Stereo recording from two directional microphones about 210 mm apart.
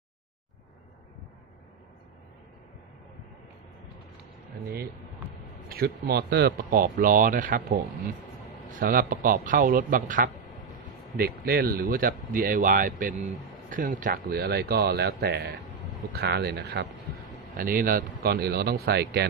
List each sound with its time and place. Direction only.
5.7 s speech: 50° right (ahead or behind)